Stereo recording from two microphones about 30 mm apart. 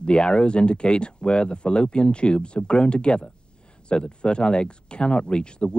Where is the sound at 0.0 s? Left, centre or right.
Left.